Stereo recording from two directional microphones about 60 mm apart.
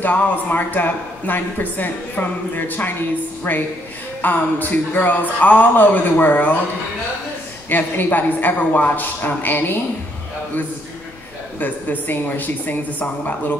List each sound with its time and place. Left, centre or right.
0.0 s a woman's voice: left
7.7 s a woman's voice: left
11.6 s speech: left